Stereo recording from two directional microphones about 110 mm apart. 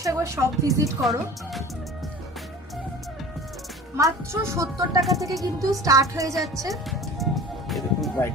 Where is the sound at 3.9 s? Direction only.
25° right (ahead or behind).